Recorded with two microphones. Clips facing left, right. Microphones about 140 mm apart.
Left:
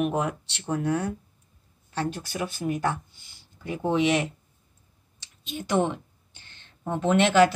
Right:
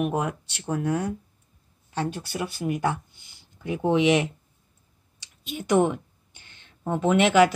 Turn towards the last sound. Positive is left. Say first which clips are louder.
# right 1 dB
turn(degrees=-10)  # may be behind; listen again after turning